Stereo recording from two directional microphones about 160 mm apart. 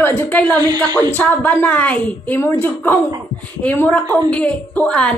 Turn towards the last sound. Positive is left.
turn(degrees=5)  # may be behind; listen again after turning